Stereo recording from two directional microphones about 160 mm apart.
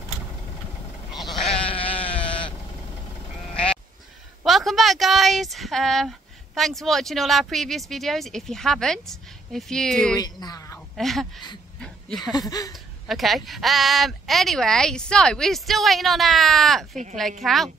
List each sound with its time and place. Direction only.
1.3 s sheep: 35° left (ahead or behind)
3.5 s bleat: 5° left (ahead or behind)
4.5 s speech: centre (ahead or behind)
10.1 s speech: 25° left (ahead or behind)
11.0 s speech: centre (ahead or behind)
12.2 s speech: 25° left (ahead or behind)
13.0 s speech: centre (ahead or behind)